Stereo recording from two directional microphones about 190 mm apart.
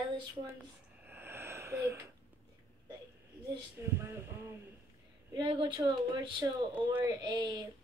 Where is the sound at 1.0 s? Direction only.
10° right (ahead or behind).